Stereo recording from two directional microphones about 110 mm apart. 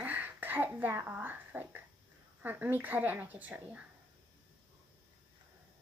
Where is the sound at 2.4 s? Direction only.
15° right (ahead or behind).